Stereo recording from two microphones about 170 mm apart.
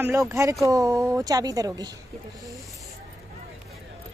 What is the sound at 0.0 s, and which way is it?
Speech, 15° right (ahead or behind).